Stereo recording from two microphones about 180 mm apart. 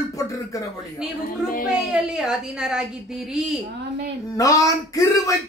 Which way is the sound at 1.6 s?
5° right (ahead or behind).